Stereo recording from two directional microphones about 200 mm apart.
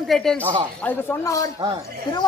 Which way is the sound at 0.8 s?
10° left (ahead or behind).